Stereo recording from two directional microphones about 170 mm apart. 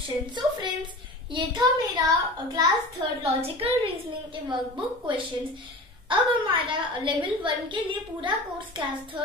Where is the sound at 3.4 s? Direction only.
35° right (ahead or behind).